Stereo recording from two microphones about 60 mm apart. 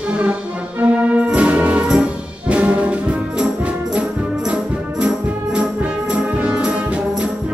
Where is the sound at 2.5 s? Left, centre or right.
Centre.